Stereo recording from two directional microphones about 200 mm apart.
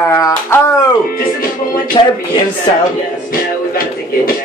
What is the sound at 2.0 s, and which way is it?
Speech, 25° left (ahead or behind).